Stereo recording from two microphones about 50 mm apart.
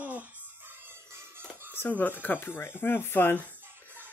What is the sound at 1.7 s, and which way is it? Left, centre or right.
Speech, left.